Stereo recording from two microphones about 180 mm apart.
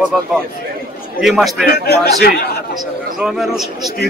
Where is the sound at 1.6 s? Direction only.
65° left (ahead or behind).